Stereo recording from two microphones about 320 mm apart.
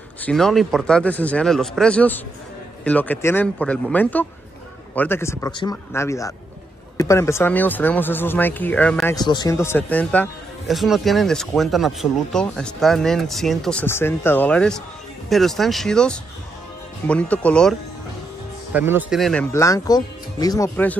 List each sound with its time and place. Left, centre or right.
0.2 s speech: centre